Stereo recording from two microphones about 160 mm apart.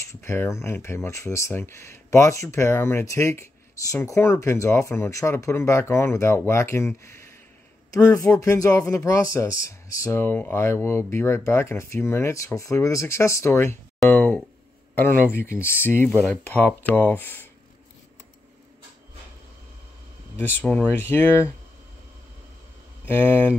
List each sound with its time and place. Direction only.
0.1 s speech: 15° left (ahead or behind)
20.3 s speech: 10° left (ahead or behind)
23.0 s speech: 10° left (ahead or behind)